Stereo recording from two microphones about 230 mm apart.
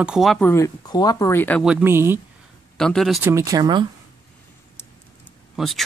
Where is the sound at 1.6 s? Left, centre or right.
Centre.